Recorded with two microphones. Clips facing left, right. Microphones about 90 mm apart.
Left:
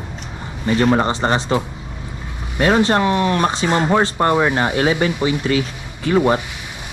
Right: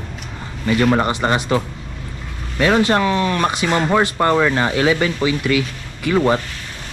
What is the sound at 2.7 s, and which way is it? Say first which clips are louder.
Speech: even; 25° left (ahead or behind).